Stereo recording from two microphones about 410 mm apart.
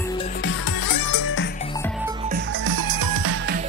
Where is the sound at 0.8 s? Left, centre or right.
Left.